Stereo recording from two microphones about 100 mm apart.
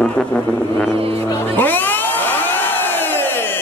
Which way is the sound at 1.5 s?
20° left (ahead or behind).